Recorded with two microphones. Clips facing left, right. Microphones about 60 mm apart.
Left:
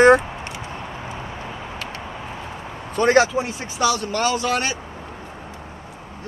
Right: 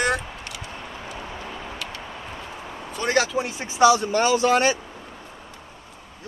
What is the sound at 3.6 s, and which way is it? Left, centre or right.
Speech, right.